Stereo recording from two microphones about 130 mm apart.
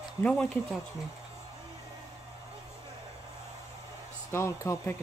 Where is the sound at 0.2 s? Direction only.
10° left (ahead or behind).